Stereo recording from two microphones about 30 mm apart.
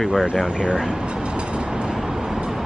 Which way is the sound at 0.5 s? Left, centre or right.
Right.